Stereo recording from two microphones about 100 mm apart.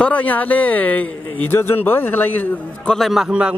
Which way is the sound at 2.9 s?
Centre (ahead or behind).